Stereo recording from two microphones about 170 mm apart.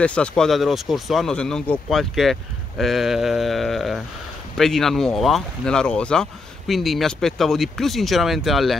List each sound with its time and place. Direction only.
0.0 s speech: 5° left (ahead or behind)